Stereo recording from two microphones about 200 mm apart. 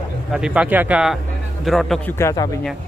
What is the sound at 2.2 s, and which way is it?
Speech, 15° left (ahead or behind).